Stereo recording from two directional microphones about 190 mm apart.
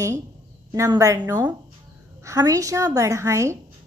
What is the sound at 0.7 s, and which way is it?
A woman's voice, 15° right (ahead or behind).